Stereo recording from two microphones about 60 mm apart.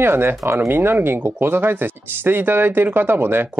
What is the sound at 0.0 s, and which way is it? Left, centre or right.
Speech, right.